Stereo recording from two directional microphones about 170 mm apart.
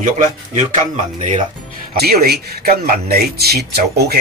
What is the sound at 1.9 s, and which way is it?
Speech, 65° right (ahead or behind).